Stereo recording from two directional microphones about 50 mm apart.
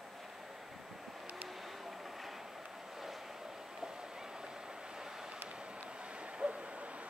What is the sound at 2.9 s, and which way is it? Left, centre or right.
Vehicle, centre.